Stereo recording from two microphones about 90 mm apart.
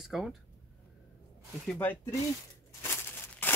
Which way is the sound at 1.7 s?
30° left (ahead or behind).